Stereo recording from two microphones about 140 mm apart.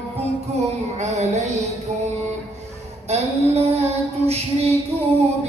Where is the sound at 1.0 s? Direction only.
55° right (ahead or behind).